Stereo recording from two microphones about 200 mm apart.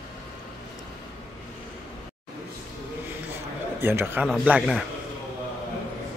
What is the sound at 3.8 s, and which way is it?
A man's voice, 10° right (ahead or behind).